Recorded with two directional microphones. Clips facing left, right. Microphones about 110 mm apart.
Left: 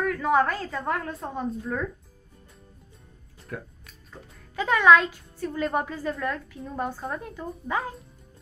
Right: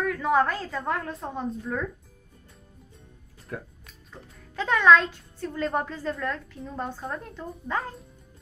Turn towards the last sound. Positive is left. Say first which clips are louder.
# left 1 dB
turn(degrees=10)  # may be behind; listen again after turning